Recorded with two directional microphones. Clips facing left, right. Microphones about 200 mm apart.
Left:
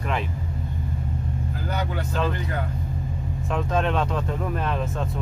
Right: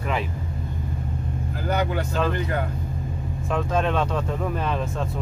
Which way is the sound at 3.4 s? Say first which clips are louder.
Right 1 dB; centre (ahead or behind).